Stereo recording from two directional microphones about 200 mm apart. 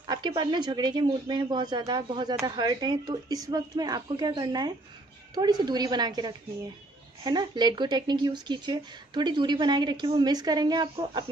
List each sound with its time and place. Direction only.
0.0 s speech: 25° right (ahead or behind)